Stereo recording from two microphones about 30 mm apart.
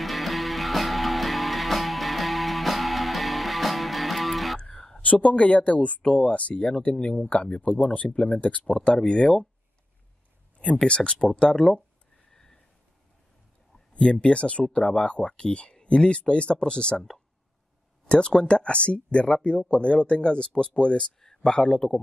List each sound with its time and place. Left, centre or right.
0.0 s music: centre
4.6 s a sound: centre
5.0 s speech: left
6.5 s speech: left
7.8 s speech: left
8.8 s speech: left
10.8 s speech: left
12.3 s a sound: centre
14.2 s speech: left
18.6 s speech: left